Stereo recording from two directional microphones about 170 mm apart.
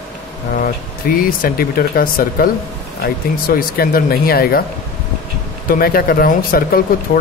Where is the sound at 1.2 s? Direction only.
60° left (ahead or behind).